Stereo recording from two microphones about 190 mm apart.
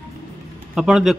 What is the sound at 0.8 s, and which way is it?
Speech, centre (ahead or behind).